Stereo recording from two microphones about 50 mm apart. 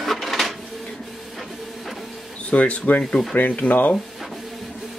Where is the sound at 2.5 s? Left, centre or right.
Left.